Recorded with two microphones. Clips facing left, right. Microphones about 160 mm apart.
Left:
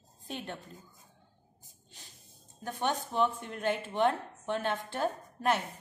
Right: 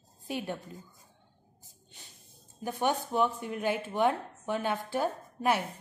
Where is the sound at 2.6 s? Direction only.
10° right (ahead or behind).